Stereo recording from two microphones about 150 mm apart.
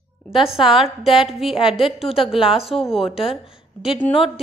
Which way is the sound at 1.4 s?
35° left (ahead or behind).